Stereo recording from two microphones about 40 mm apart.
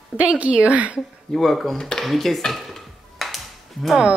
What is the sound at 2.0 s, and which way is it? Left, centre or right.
Speech, centre.